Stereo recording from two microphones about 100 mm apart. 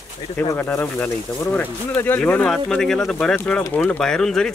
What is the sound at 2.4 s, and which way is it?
Speech, 5° left (ahead or behind).